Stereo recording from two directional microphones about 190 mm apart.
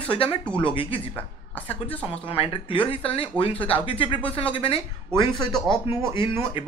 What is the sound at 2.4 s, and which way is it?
Speech, 30° left (ahead or behind).